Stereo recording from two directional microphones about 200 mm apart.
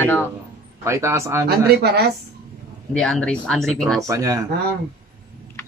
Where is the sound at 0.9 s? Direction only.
15° right (ahead or behind).